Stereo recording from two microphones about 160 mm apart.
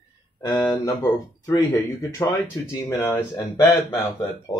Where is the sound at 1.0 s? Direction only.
20° left (ahead or behind).